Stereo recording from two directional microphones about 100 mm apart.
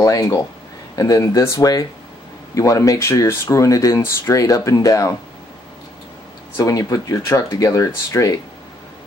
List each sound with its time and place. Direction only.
0.0 s speech: 35° left (ahead or behind)
6.5 s speech: 35° left (ahead or behind)